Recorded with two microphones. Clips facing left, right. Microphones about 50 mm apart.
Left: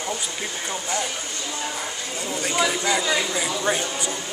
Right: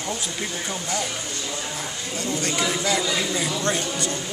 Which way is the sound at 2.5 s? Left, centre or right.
Centre.